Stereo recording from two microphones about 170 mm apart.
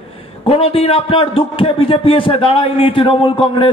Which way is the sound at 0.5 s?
35° left (ahead or behind).